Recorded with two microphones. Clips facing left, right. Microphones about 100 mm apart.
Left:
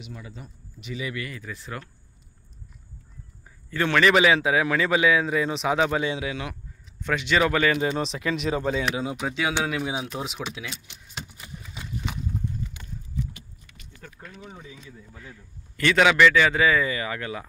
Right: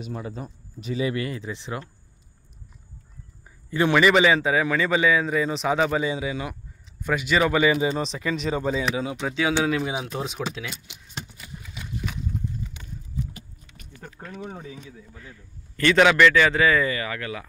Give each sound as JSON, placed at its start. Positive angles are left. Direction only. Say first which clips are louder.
{"t": 0.0, "sound": "speech", "louder": "right 8 dB", "side_deg": -45}
{"t": 3.7, "sound": "a man's voice", "louder": "right 2 dB", "side_deg": -10}
{"t": 4.1, "sound": "speech", "louder": "right 1 dB", "side_deg": 0}
{"t": 10.9, "sound": "a man's voice", "louder": "right 1 dB", "side_deg": -15}
{"t": 11.4, "sound": "horse", "louder": "even", "side_deg": 20}
{"t": 14.3, "sound": "speech", "louder": "right 9 dB", "side_deg": -50}
{"t": 15.0, "sound": "a man's voice", "louder": "even", "side_deg": 5}